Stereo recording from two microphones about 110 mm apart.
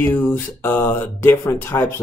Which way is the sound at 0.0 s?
15° left (ahead or behind).